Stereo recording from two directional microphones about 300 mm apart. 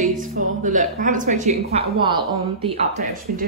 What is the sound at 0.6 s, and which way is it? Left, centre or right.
Speech, right.